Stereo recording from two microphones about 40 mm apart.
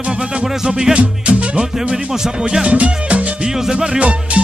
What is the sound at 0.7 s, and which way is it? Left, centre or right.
Speech, centre.